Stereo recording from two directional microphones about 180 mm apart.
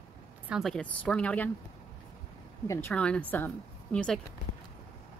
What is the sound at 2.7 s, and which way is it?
A woman's voice, 15° left (ahead or behind).